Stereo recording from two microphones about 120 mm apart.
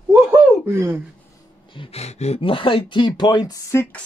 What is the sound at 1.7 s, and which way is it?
Speech, 50° left (ahead or behind).